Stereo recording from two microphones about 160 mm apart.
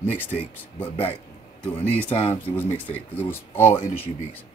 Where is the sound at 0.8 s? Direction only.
40° left (ahead or behind).